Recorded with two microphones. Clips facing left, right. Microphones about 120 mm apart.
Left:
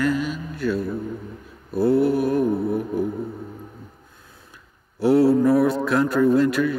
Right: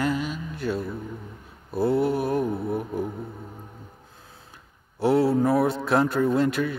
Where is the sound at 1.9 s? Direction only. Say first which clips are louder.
Left 5 dB; 20° right (ahead or behind).